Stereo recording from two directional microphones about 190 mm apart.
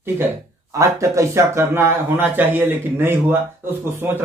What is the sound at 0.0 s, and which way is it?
Speech, 15° right (ahead or behind).